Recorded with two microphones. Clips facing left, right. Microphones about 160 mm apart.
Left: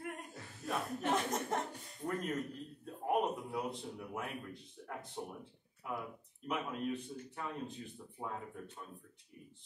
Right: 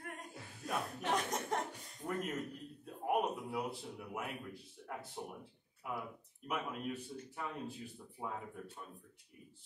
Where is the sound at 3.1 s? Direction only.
5° right (ahead or behind).